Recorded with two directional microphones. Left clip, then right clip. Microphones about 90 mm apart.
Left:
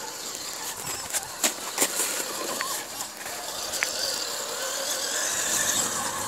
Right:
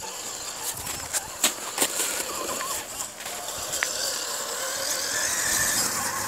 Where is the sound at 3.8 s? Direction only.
Centre (ahead or behind).